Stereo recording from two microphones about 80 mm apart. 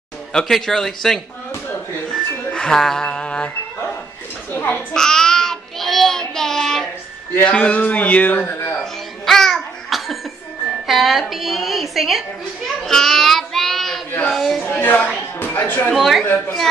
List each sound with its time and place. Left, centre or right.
0.3 s a man's voice: centre
2.1 s music: centre
4.5 s a child's voice: left
4.9 s child singing: centre
7.4 s speech: centre
8.7 s music: centre
10.9 s a woman's voice: centre
14.6 s speech: left
15.9 s a man's voice: centre
16.3 s speech: centre